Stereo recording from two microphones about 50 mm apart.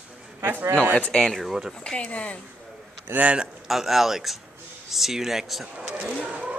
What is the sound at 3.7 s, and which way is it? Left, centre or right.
Speech, centre.